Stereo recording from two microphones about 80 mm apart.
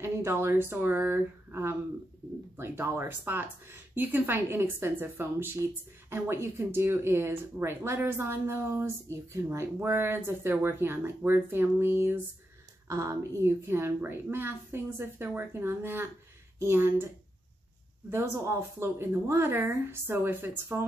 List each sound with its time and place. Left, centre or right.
0.0 s speech: right
12.8 s speech: right
18.1 s speech: right